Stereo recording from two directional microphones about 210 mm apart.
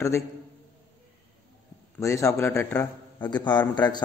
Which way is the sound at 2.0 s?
15° left (ahead or behind).